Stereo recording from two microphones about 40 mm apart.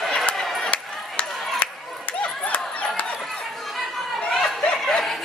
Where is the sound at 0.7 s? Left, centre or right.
Left.